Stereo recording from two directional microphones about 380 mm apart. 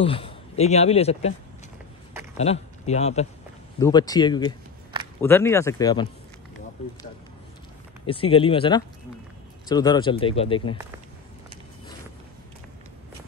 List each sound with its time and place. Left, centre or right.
0.0 s speech: centre
2.3 s speech: centre
8.1 s speech: centre